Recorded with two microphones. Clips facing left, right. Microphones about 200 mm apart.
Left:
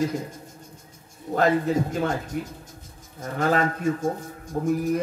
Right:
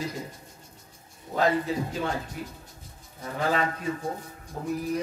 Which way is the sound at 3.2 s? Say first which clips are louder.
Left 4 dB; 45° left (ahead or behind).